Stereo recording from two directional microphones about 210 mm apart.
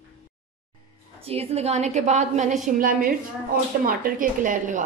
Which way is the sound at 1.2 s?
30° right (ahead or behind).